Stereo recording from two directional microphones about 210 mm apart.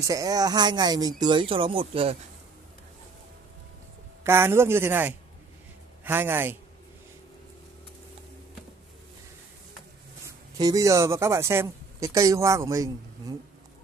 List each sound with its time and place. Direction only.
0.0 s speech: 15° right (ahead or behind)
4.2 s speech: 10° right (ahead or behind)
10.2 s speech: 15° right (ahead or behind)